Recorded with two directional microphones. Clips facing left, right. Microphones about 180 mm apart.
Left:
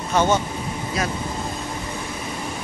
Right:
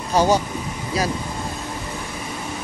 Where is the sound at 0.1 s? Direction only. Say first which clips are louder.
Right 2 dB; 35° right (ahead or behind).